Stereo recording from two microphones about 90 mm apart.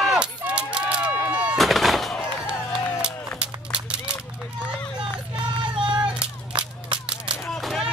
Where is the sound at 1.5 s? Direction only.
Centre (ahead or behind).